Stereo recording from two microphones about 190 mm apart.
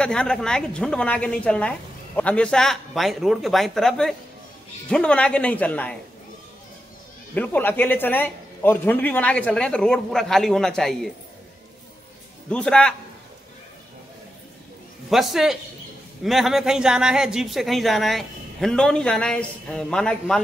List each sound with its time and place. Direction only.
0.0 s a man's voice: 5° left (ahead or behind)
7.3 s a man's voice: 10° left (ahead or behind)
12.4 s speech: 5° left (ahead or behind)
15.0 s speech: centre (ahead or behind)